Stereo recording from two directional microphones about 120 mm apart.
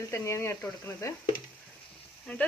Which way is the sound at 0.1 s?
20° left (ahead or behind).